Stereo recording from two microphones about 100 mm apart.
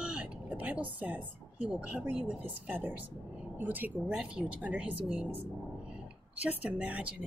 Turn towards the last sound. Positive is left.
turn(degrees=-15)  # may be behind; listen again after turning